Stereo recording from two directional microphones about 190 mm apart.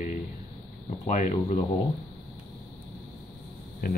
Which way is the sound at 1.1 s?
40° left (ahead or behind).